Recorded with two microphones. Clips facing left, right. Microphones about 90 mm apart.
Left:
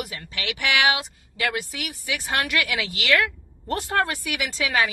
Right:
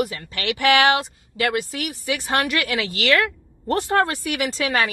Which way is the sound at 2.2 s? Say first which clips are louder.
Right 2 dB; 35° right (ahead or behind).